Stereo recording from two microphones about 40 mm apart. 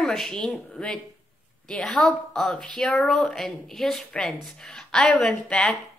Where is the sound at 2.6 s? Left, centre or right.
Centre.